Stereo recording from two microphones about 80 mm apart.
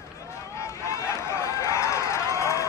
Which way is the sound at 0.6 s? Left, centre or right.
Left.